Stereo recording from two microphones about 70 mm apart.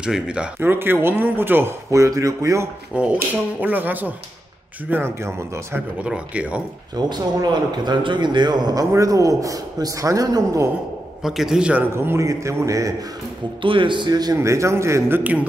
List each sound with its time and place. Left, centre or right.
0.0 s speech: centre
0.6 s speech: right
1.9 s a man's voice: right
2.9 s speech: centre
5.2 s speech: right
6.0 s speech: centre
7.0 s a man's voice: right
8.9 s a man's voice: right
11.2 s a man's voice: centre
11.9 s speech: right
12.2 s a man's voice: right
14.0 s a man's voice: right
14.4 s a man's voice: right